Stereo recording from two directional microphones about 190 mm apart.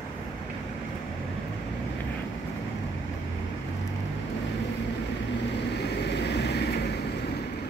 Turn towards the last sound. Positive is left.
turn(degrees=60)  # may be behind; listen again after turning